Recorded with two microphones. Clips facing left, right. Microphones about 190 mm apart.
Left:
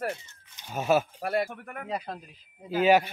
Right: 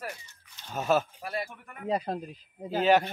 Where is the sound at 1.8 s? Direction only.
35° right (ahead or behind).